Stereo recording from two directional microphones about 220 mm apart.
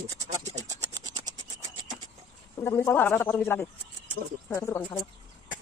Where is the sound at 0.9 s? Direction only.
20° right (ahead or behind).